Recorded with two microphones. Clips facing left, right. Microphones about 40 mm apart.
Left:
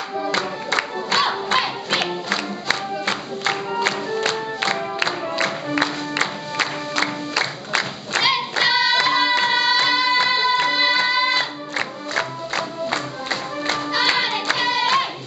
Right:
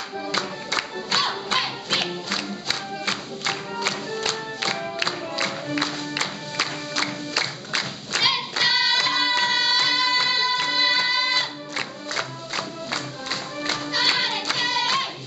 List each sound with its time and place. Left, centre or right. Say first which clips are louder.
0.2 s music: left 4 dB; centre
2.7 s music: left 5 dB; left